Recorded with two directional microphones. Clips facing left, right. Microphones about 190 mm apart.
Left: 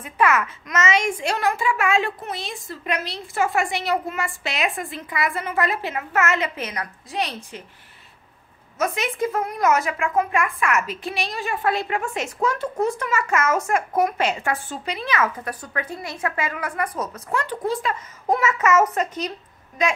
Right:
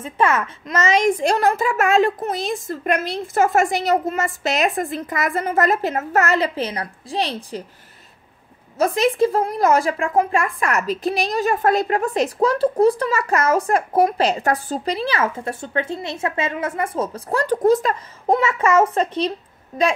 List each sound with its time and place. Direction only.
0.0 s speech: 30° right (ahead or behind)
8.7 s speech: 35° right (ahead or behind)
18.2 s a child's voice: 25° right (ahead or behind)